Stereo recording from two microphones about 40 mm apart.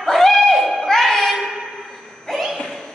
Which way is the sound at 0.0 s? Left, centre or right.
Centre.